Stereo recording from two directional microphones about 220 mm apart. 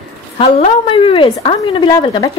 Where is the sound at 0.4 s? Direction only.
25° left (ahead or behind).